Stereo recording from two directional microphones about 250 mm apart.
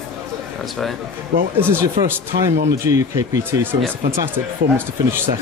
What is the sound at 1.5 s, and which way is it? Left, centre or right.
A man's voice, centre.